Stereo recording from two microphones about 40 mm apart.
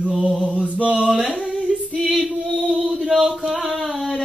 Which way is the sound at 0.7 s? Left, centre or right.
Right.